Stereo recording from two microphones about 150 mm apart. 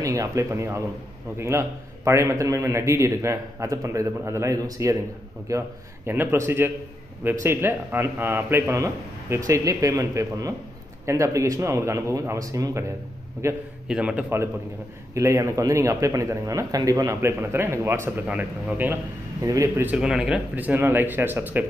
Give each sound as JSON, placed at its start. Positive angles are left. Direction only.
{"t": 0.0, "sound": "a man's voice", "side_deg": -20}
{"t": 13.8, "sound": "a man's voice", "side_deg": -5}
{"t": 19.9, "sound": "a man's voice", "side_deg": -5}